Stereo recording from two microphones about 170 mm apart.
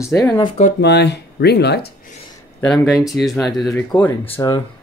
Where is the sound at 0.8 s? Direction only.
75° left (ahead or behind).